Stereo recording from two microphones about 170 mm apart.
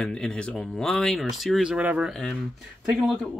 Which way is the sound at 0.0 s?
5° left (ahead or behind).